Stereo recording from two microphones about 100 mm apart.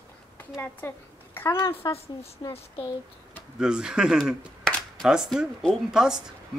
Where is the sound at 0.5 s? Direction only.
20° left (ahead or behind).